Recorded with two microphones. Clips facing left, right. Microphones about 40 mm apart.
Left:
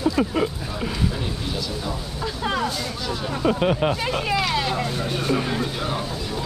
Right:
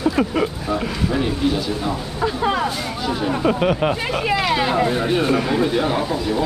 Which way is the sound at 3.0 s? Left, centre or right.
Right.